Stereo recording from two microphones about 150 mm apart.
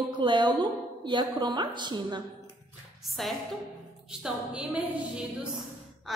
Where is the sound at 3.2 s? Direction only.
Centre (ahead or behind).